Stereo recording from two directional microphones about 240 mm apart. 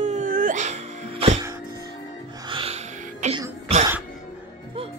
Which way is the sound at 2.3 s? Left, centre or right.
Right.